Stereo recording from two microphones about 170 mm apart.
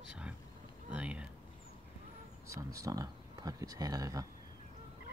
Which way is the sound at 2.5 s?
20° right (ahead or behind).